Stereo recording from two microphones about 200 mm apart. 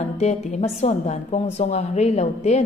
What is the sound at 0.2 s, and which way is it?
A woman's voice, 35° left (ahead or behind).